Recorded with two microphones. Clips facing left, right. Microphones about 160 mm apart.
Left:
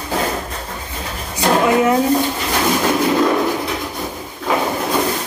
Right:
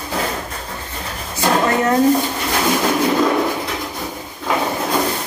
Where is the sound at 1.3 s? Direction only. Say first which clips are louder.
Left 2 dB; 10° left (ahead or behind).